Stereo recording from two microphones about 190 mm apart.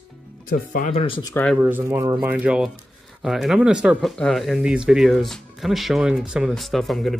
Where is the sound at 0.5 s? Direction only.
45° left (ahead or behind).